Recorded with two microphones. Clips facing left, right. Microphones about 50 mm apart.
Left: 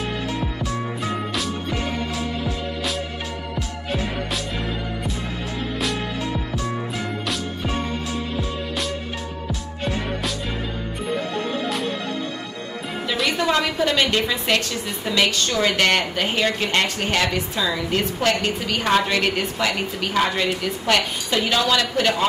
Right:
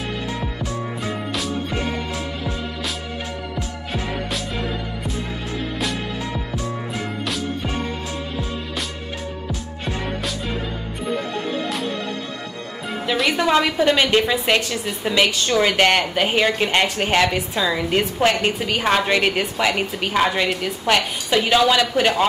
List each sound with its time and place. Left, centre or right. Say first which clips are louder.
13.4 s a woman's voice: right 3 dB; centre